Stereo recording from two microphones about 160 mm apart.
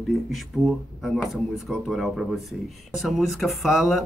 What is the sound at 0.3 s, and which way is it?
Speech, centre (ahead or behind).